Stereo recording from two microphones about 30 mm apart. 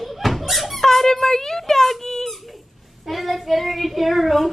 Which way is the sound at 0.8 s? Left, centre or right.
Centre.